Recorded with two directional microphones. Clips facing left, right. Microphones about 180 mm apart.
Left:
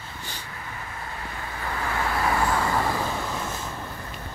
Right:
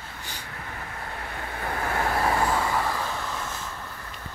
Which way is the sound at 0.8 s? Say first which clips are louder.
Even; 55° right (ahead or behind).